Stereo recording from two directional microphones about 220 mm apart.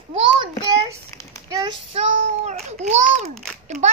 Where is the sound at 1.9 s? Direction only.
30° right (ahead or behind).